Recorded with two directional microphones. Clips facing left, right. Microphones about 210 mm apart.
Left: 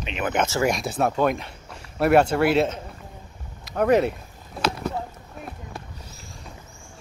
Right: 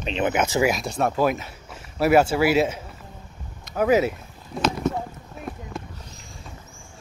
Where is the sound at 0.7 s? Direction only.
Centre (ahead or behind).